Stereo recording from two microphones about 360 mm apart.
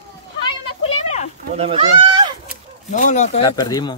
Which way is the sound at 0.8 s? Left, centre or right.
Centre.